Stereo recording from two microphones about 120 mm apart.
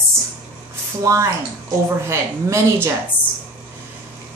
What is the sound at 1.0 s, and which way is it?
Speech, 25° right (ahead or behind).